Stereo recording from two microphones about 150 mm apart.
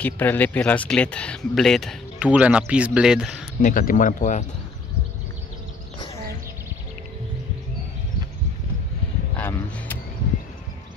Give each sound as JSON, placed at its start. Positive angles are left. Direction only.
{"t": 0.0, "sound": "speech", "side_deg": 10}
{"t": 3.6, "sound": "speech", "side_deg": 70}
{"t": 9.4, "sound": "a sound", "side_deg": 15}